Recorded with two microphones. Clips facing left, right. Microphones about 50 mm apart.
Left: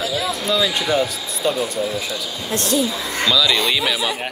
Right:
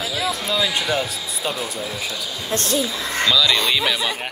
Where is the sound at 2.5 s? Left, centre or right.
Right.